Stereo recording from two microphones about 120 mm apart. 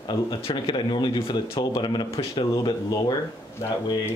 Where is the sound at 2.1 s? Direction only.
55° left (ahead or behind); by 3.1 s 35° left (ahead or behind).